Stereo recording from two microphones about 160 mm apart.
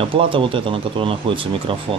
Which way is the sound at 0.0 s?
35° right (ahead or behind).